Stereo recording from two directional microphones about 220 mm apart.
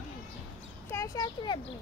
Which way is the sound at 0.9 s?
15° left (ahead or behind).